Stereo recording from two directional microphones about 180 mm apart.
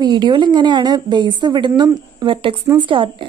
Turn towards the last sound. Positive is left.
turn(degrees=-30)  # may be behind; listen again after turning